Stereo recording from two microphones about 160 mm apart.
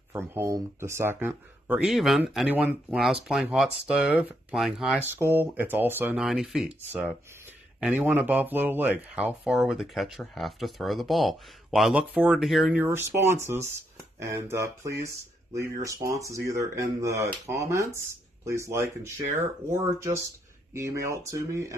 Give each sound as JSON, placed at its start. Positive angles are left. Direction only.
{"t": 0.3, "sound": "speech", "side_deg": -15}
{"t": 1.9, "sound": "speech", "side_deg": 0}
{"t": 12.8, "sound": "speech", "side_deg": -15}